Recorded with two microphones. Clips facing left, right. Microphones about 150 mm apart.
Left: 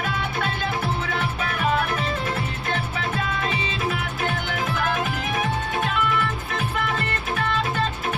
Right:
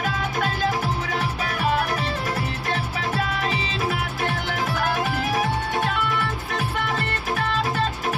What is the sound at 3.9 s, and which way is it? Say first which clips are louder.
Music: even; 35° right (ahead or behind).